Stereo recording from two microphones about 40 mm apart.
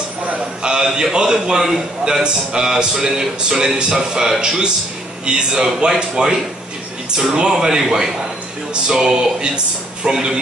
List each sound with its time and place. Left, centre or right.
0.6 s a man's voice: centre
2.2 s a sound: centre
7.1 s speech: centre